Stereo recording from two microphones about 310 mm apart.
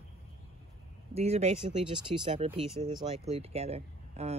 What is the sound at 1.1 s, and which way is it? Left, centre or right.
Speech, centre.